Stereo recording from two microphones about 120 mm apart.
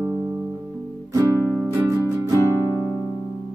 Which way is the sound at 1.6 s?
25° right (ahead or behind).